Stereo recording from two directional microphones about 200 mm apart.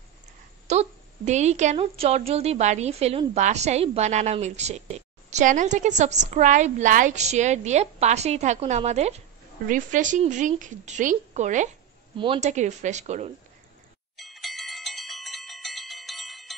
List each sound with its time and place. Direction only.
0.7 s a woman's voice: 35° right (ahead or behind)
14.1 s bell: centre (ahead or behind)